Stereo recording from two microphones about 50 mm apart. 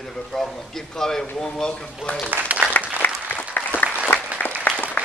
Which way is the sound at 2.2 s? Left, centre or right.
Right.